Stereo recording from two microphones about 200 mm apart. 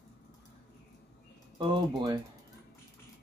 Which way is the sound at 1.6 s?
25° right (ahead or behind).